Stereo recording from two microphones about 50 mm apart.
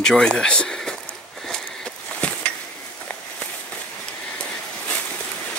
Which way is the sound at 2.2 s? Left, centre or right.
Left.